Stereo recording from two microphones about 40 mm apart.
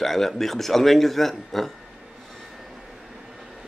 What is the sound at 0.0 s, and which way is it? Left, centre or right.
Speech, centre.